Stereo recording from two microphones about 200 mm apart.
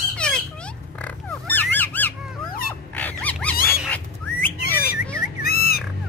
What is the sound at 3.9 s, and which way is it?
Bird, 10° left (ahead or behind).